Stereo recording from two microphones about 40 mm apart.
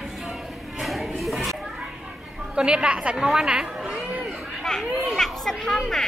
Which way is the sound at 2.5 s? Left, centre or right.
Right.